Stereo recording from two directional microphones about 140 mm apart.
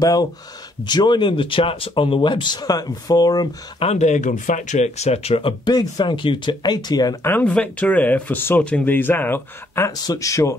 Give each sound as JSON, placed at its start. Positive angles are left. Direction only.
{"t": 0.0, "sound": "speech", "side_deg": 25}
{"t": 3.8, "sound": "speech", "side_deg": 55}
{"t": 5.7, "sound": "speech", "side_deg": 30}
{"t": 7.2, "sound": "speech", "side_deg": 10}